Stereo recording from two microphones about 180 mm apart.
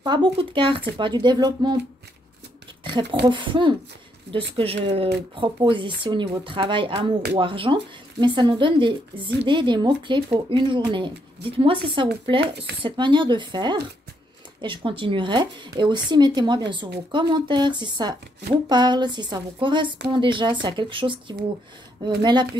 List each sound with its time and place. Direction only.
0.0 s speech: 25° right (ahead or behind)
2.8 s a sound: 25° right (ahead or behind)
3.3 s speech: 25° right (ahead or behind)